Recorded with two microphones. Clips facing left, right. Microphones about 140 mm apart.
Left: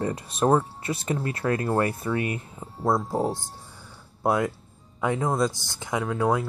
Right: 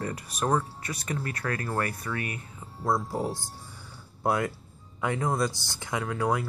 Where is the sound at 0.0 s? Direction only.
25° left (ahead or behind).